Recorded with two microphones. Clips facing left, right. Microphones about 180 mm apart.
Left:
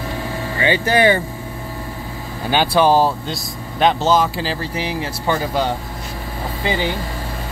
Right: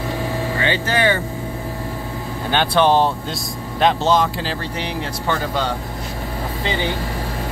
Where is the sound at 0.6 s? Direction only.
10° left (ahead or behind).